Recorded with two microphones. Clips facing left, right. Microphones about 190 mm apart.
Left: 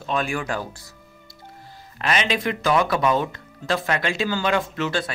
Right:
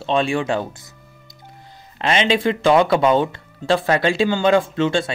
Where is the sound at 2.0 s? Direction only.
25° right (ahead or behind).